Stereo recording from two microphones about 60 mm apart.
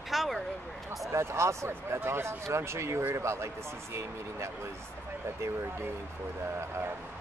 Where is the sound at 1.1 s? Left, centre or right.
Right.